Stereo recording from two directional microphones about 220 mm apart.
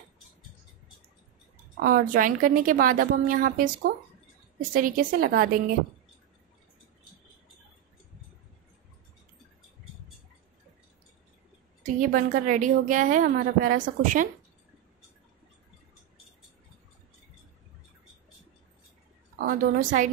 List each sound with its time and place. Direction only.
1.8 s a woman's voice: 40° right (ahead or behind)
4.9 s a woman's voice: 40° right (ahead or behind)
11.8 s a woman's voice: 35° right (ahead or behind)
19.4 s a woman's voice: 40° right (ahead or behind)